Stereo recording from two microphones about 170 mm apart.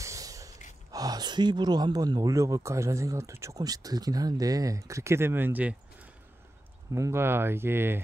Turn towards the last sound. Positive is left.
turn(degrees=-15)  # may be behind; listen again after turning